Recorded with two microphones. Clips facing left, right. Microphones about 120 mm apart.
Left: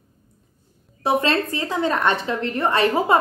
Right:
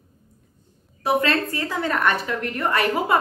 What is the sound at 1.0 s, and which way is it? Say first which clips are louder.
A woman's voice: left 1 dB; 25° left (ahead or behind).